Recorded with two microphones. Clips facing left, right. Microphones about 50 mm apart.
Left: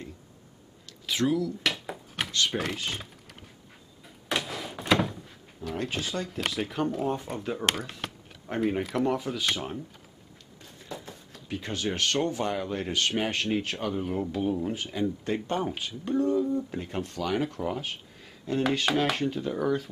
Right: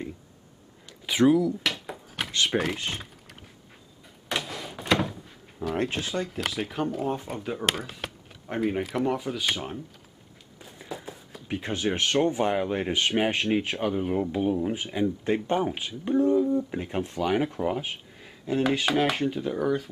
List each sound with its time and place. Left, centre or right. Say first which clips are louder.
0.8 s a sound: right 6 dB; centre
1.6 s drawer open or close: even; centre
2.3 s speech: right 3 dB; centre
2.6 s speech: right 2 dB; centre
4.0 s door: even; centre
5.9 s speech: right 2 dB; centre
10.6 s a sound: right 3 dB; centre
11.4 s speech: right 3 dB; right; by 19.9 s centre